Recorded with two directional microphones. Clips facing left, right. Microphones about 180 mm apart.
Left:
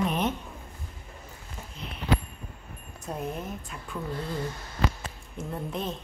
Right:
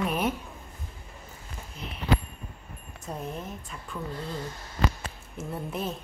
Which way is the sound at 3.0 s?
5° left (ahead or behind).